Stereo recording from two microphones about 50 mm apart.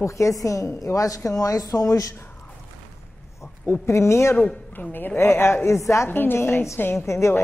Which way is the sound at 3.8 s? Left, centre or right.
Left.